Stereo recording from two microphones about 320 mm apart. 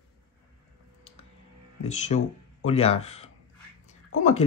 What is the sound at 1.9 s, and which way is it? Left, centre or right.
Speech, left.